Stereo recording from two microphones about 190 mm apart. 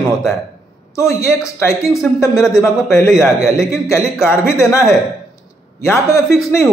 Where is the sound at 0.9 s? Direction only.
15° left (ahead or behind).